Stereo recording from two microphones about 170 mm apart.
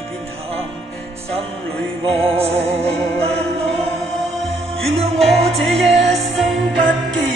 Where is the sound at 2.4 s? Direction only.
35° right (ahead or behind).